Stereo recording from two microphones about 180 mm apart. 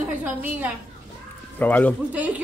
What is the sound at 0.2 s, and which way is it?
Speech, 10° right (ahead or behind).